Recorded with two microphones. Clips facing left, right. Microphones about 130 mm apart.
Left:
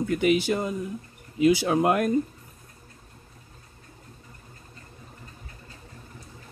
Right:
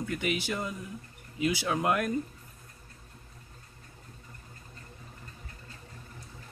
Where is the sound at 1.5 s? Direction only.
40° left (ahead or behind).